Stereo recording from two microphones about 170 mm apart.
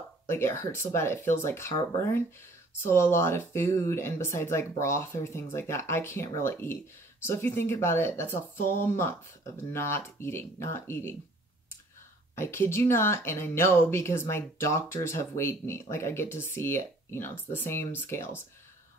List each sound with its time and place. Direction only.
0.3 s speech: 15° left (ahead or behind)
12.4 s speech: 15° left (ahead or behind)